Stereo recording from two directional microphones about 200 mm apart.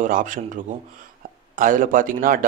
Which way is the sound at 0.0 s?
40° right (ahead or behind).